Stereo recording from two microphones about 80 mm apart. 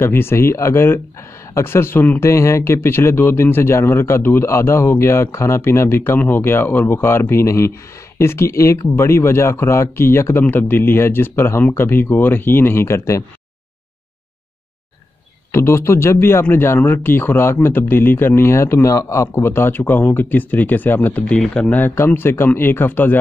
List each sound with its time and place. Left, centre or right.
0.0 s speech: left
15.5 s speech: left
19.3 s speech: left
21.4 s speech: centre
21.7 s speech: left